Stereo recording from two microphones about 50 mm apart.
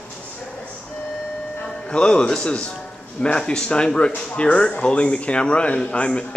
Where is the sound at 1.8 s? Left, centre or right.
Centre.